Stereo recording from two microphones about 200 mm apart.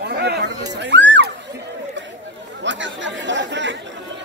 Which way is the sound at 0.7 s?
60° right (ahead or behind).